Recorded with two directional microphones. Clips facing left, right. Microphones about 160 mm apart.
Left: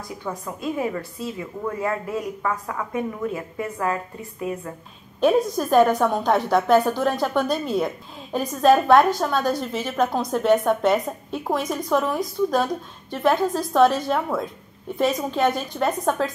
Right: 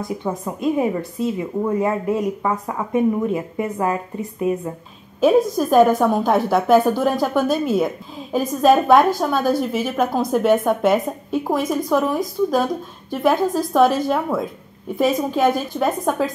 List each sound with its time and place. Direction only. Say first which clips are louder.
0.0 s a woman's voice: right 7 dB; 25° right (ahead or behind)
5.2 s a woman's voice: right 4 dB; 5° right (ahead or behind)